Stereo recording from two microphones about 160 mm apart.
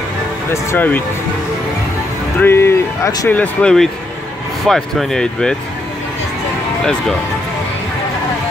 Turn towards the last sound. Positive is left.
turn(degrees=5)  # may be behind; listen again after turning